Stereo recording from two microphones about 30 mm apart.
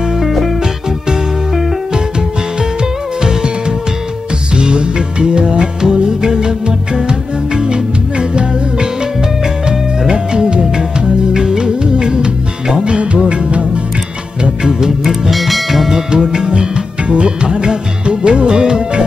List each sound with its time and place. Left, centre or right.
2.8 s music: right
12.9 s music: right
14.4 s music: right
15.2 s music: centre
15.9 s music: right